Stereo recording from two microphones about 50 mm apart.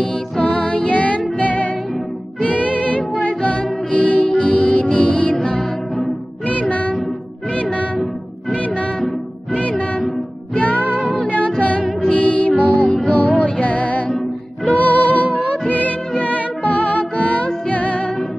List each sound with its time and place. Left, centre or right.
0.0 s music: centre
0.5 s music: left
6.4 s music: left
8.5 s music: left